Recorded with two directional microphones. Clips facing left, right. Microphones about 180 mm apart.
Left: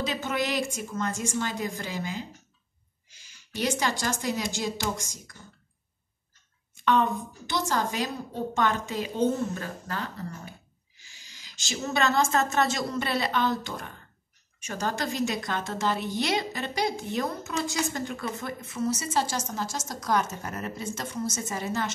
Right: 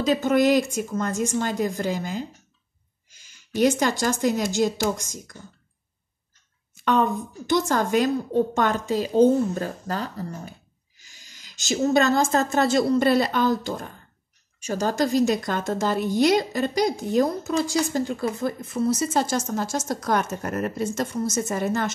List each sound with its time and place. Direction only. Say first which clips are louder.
0.0 s a woman's voice: right 10 dB; 45° right (ahead or behind)
3.1 s a sound: right 8 dB; 50° right (ahead or behind)
4.0 s a woman's voice: right 7 dB; 45° right (ahead or behind)
6.9 s a woman's voice: right 3 dB; 45° right (ahead or behind)
8.5 s a woman's voice: right 4 dB; 40° right (ahead or behind)
19.1 s a woman's voice: right 5 dB; 50° right (ahead or behind)